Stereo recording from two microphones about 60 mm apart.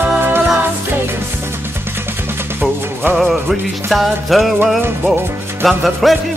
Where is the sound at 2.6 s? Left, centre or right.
Right.